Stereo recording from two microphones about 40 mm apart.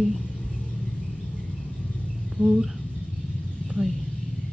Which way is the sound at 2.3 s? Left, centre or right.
Centre.